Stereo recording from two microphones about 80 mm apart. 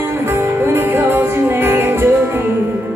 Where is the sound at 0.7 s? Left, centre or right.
Right.